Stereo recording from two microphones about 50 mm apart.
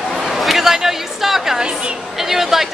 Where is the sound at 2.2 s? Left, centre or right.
Centre.